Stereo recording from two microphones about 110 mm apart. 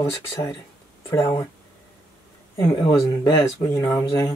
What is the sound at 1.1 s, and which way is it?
Speech, 30° left (ahead or behind).